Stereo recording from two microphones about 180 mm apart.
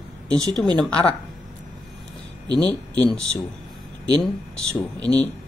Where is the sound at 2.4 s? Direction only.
20° right (ahead or behind).